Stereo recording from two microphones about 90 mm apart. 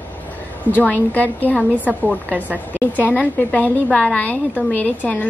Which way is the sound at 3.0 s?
20° left (ahead or behind).